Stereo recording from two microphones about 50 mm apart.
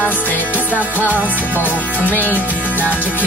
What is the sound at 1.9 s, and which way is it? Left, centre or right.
Music, left.